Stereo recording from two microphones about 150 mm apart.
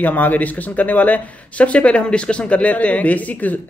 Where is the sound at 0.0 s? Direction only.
10° left (ahead or behind).